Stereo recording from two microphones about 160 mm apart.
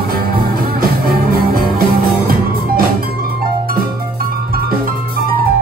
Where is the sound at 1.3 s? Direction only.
70° right (ahead or behind).